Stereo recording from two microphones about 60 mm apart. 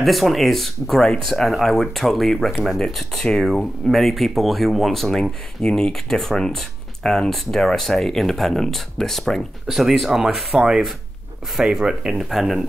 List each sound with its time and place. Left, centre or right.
0.0 s speech: centre